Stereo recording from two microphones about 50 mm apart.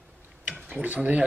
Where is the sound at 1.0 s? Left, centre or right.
Right.